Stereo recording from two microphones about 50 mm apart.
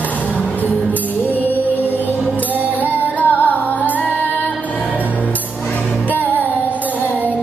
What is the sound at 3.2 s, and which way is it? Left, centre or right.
Music, left.